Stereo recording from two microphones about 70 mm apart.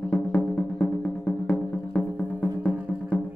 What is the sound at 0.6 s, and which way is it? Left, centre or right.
Music, centre.